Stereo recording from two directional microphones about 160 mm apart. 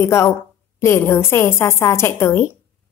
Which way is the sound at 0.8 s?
15° left (ahead or behind).